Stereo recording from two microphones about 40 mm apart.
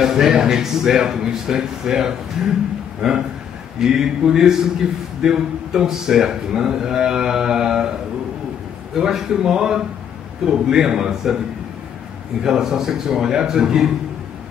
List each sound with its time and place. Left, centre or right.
0.0 s speech: centre
9.0 s speech: centre
12.4 s speech: centre